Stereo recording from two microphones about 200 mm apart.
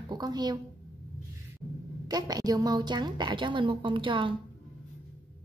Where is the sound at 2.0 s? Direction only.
20° right (ahead or behind).